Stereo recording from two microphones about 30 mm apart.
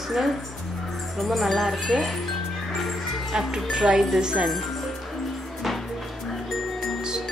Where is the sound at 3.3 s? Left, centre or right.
Centre.